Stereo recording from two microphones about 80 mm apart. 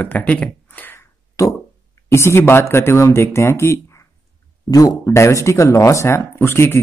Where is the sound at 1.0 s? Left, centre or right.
Left.